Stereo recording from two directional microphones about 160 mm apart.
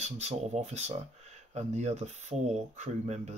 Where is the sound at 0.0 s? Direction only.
40° right (ahead or behind).